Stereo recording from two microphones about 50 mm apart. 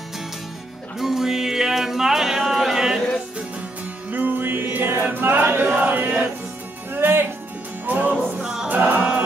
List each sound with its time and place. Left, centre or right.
0.9 s music: centre
4.1 s music: right
5.1 s choir: right
5.7 s chant: right
6.9 s music: right
7.8 s music: right
8.4 s music: centre
8.6 s music: right